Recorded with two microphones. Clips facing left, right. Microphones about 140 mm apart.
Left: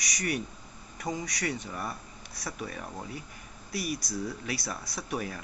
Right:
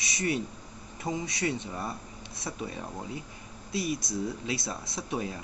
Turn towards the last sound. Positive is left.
turn(degrees=-25)  # may be behind; listen again after turning